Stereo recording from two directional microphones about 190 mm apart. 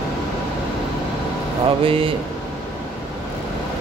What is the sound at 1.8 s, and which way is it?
Speech, 30° right (ahead or behind).